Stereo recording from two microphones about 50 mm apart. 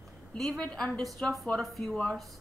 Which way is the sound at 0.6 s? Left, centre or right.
Centre.